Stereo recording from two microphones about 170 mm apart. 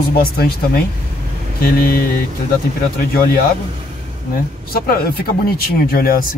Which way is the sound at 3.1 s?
60° left (ahead or behind).